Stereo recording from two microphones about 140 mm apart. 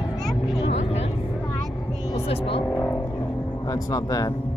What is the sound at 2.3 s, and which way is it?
Vehicle, 40° left (ahead or behind).